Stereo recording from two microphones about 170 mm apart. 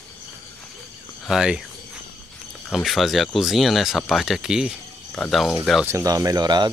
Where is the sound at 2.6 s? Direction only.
Centre (ahead or behind).